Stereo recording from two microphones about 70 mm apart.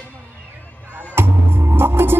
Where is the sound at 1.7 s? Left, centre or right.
Right.